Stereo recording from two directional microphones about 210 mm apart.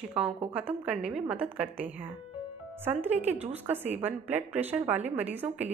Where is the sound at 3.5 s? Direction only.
10° right (ahead or behind).